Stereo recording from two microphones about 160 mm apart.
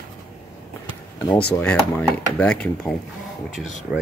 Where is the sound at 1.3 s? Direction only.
10° left (ahead or behind).